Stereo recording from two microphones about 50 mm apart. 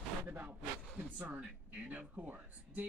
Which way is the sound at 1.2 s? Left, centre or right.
Right.